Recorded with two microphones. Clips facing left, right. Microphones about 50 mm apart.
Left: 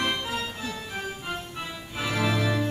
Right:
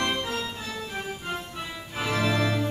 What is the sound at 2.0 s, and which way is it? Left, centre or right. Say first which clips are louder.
Organ: right 1 dB; centre.